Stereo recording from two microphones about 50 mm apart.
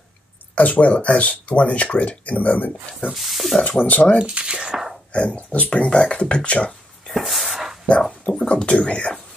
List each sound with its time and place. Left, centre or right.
0.6 s speech: left
3.1 s speech: centre
3.8 s speech: left
4.2 s speech: centre
5.1 s speech: left
7.1 s a sound: centre
8.0 s speech: centre